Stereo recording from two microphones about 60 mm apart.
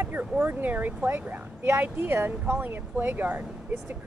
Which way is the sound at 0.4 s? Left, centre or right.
Right.